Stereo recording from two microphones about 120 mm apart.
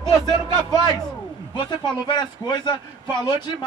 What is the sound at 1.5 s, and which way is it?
Speech, 35° left (ahead or behind).